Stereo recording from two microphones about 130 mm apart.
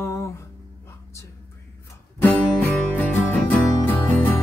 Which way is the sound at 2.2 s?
15° left (ahead or behind).